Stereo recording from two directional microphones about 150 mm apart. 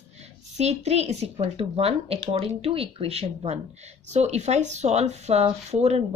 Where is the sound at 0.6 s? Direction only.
45° right (ahead or behind).